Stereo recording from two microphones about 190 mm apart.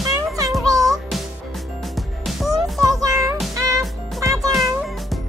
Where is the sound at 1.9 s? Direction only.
Centre (ahead or behind).